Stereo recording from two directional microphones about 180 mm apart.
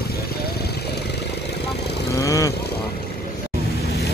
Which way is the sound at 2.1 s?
15° left (ahead or behind).